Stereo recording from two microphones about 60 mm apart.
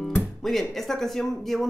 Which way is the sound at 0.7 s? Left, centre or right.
Centre.